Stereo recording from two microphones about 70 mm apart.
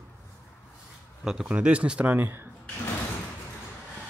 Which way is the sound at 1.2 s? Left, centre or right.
Centre.